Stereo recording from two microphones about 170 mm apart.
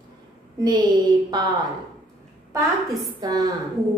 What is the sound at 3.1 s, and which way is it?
Speech, 20° right (ahead or behind).